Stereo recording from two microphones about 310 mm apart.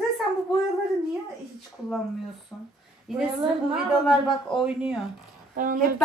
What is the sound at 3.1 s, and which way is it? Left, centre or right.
Speech, centre.